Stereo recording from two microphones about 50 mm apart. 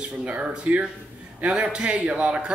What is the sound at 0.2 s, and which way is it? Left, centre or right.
A man's voice, right.